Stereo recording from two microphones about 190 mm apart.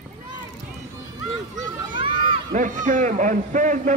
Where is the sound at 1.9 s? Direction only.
25° right (ahead or behind).